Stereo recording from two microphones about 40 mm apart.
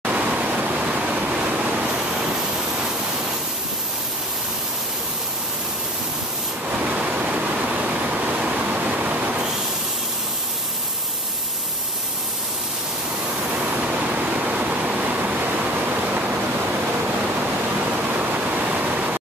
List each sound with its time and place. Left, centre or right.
0.0 s waterfall: right
2.0 s spray: right
6.8 s waterfall: right
13.7 s a sound: right
15.3 s waterfall: right
17.9 s pink noise: right